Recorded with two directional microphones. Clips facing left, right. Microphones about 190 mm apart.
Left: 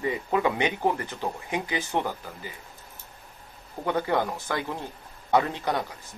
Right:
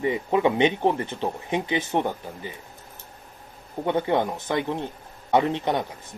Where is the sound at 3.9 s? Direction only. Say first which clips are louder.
Right 3 dB; 20° right (ahead or behind).